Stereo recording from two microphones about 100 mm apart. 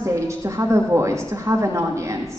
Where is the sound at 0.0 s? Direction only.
30° right (ahead or behind).